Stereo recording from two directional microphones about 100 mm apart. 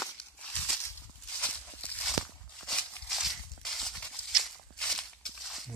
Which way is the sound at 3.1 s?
Centre (ahead or behind).